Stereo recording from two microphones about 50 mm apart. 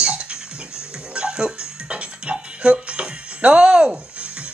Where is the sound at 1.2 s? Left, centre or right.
Centre.